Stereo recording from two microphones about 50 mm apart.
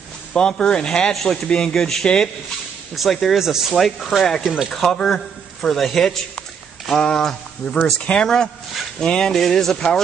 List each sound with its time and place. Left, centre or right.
0.3 s a man's voice: centre
3.3 s speech: centre
3.7 s speech: centre
4.4 s speech: centre
4.6 s a man's voice: centre
9.0 s a man's voice: centre